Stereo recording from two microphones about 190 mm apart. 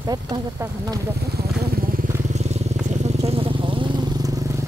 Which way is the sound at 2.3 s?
35° right (ahead or behind).